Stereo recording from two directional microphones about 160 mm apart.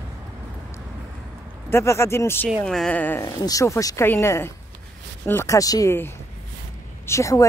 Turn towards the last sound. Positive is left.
turn(degrees=20)  # may be behind; listen again after turning